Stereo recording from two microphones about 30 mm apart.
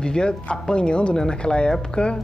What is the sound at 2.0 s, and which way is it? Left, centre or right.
Speech, left.